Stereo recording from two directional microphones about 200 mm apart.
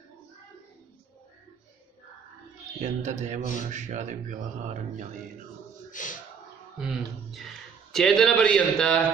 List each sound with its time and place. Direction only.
2.8 s speech: 35° right (ahead or behind)
5.9 s a sound: 40° left (ahead or behind)
6.8 s a man's voice: centre (ahead or behind)